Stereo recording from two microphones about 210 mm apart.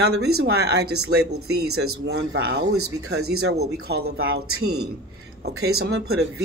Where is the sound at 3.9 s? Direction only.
50° right (ahead or behind).